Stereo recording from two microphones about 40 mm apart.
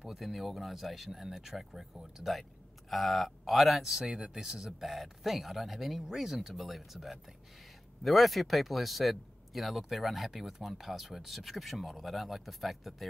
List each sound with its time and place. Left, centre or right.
0.0 s speech: centre
3.8 s speech: centre